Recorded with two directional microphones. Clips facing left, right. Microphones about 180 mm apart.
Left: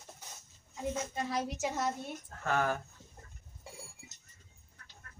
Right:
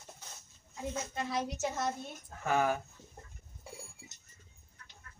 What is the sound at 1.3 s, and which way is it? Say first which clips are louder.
Speech: right 1 dB; 10° left (ahead or behind).